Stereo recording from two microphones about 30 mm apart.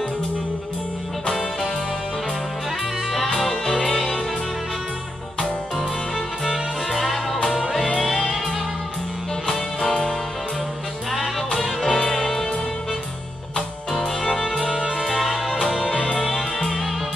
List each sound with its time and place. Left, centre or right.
3.3 s music: centre
6.1 s music: centre
6.9 s music: centre
9.8 s music: centre
11.1 s music: centre
14.6 s music: centre
15.0 s music: centre